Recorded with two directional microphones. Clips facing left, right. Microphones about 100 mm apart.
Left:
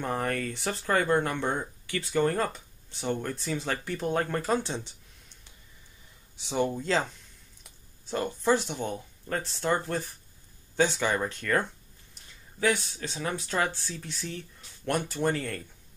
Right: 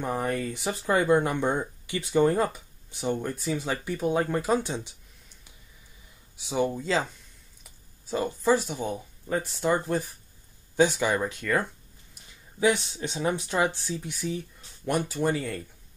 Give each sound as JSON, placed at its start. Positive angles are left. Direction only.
{"t": 0.0, "sound": "speech", "side_deg": -10}
{"t": 6.3, "sound": "speech", "side_deg": -5}
{"t": 12.1, "sound": "speech", "side_deg": -15}